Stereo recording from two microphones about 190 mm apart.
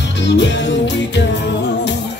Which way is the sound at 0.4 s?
70° left (ahead or behind).